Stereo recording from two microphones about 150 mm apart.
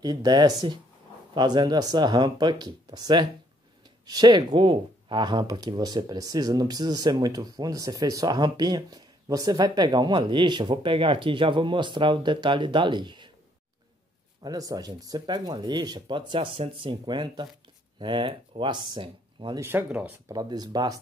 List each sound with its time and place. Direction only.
0.0 s speech: 25° right (ahead or behind)
14.4 s speech: 25° right (ahead or behind)
19.6 s speech: 15° right (ahead or behind)
20.2 s speech: 25° right (ahead or behind)